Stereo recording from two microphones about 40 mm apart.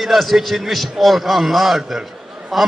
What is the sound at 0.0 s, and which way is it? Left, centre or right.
A man's voice, centre.